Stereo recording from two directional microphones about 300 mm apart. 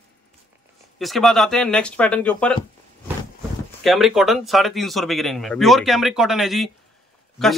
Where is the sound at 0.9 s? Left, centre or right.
Centre.